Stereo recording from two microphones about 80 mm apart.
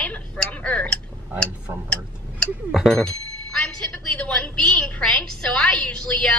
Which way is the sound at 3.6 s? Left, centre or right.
Centre.